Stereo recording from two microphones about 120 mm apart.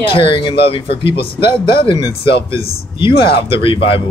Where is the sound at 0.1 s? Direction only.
45° left (ahead or behind).